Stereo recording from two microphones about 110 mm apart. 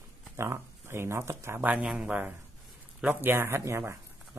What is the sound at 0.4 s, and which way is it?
Speech, 25° right (ahead or behind).